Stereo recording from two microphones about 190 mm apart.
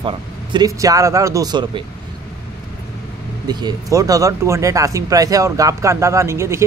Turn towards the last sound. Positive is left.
turn(degrees=-15)  # may be behind; listen again after turning